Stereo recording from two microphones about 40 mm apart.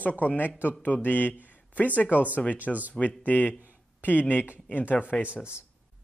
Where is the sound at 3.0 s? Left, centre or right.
Left.